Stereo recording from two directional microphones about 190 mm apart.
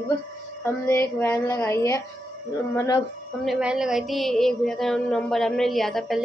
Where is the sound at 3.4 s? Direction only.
5° right (ahead or behind).